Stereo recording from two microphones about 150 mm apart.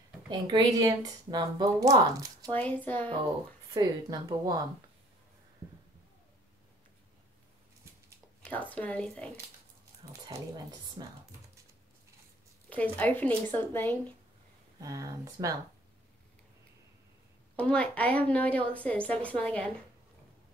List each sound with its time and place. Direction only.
0.3 s speech: 30° right (ahead or behind)
2.5 s a woman's voice: 10° left (ahead or behind)
3.7 s speech: 25° right (ahead or behind)
8.5 s a woman's voice: 10° left (ahead or behind)
10.2 s speech: 25° right (ahead or behind)
12.6 s a woman's voice: 10° left (ahead or behind)
14.8 s speech: 25° right (ahead or behind)
17.6 s a woman's voice: 10° left (ahead or behind)